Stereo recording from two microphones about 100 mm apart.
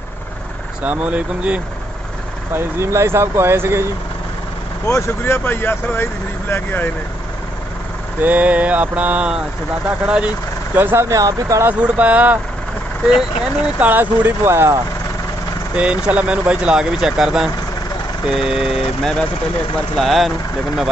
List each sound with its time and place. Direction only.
0.8 s speech: 15° right (ahead or behind)
2.5 s speech: 30° right (ahead or behind)
4.8 s speech: 30° left (ahead or behind)
8.2 s speech: 15° right (ahead or behind)
11.1 s speech: 35° right (ahead or behind)
11.6 s speech: 15° right (ahead or behind)
13.7 s speech: 15° right (ahead or behind)
15.7 s speech: 10° right (ahead or behind)
20.0 s speech: centre (ahead or behind)